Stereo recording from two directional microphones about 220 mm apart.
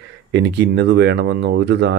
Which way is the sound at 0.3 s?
50° right (ahead or behind).